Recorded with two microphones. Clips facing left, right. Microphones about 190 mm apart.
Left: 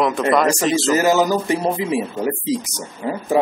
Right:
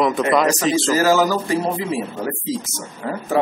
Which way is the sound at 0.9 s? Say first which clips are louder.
Even; 20° left (ahead or behind).